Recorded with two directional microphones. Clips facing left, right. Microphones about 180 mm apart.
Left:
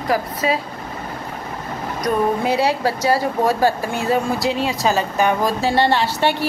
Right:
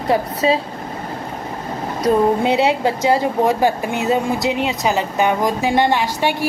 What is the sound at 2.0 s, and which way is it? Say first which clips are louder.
Speech: right 4 dB; 25° right (ahead or behind).